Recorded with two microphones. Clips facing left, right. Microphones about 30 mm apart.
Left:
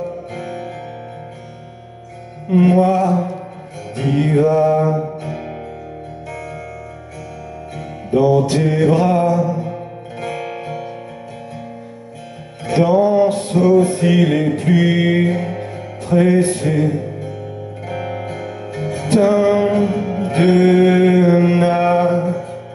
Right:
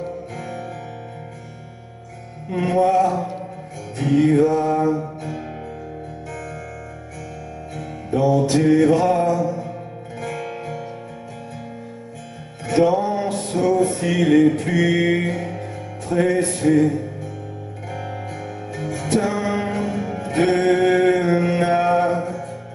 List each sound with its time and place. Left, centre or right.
0.4 s music: left
2.8 s music: left
4.6 s mantra: centre
4.9 s music: left
7.7 s music: left
12.6 s music: centre
14.1 s mantra: left
16.2 s music: left
17.8 s music: left
20.4 s mantra: left